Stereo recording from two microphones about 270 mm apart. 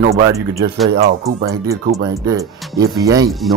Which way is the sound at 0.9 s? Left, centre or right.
Right.